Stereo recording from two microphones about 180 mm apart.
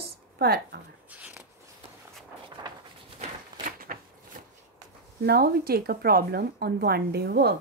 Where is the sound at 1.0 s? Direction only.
10° right (ahead or behind).